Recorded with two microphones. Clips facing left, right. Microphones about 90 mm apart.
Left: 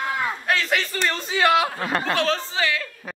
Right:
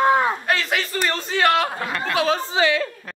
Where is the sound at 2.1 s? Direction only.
10° right (ahead or behind).